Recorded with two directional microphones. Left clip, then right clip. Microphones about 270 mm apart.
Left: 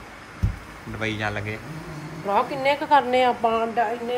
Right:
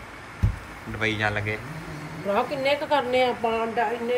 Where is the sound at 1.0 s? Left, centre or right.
Centre.